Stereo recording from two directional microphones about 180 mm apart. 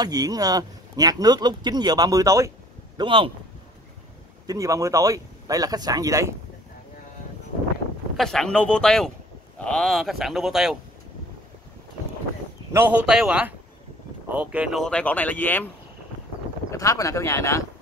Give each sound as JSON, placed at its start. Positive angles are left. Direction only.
{"t": 0.0, "sound": "speech", "side_deg": -20}
{"t": 3.0, "sound": "speech", "side_deg": -30}
{"t": 4.5, "sound": "speech", "side_deg": -20}
{"t": 8.2, "sound": "speech", "side_deg": 5}
{"t": 12.7, "sound": "a man's voice", "side_deg": -10}
{"t": 16.7, "sound": "speech", "side_deg": 20}